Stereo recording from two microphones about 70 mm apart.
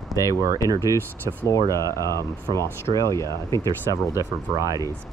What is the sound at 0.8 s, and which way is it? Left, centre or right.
Speech, left.